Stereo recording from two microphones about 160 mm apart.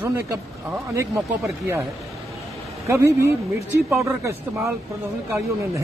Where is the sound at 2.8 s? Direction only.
15° right (ahead or behind).